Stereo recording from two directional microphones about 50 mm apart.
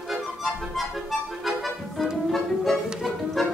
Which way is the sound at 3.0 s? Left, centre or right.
Centre.